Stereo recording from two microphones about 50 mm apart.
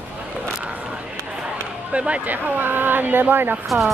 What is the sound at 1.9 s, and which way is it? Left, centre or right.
Speech, right.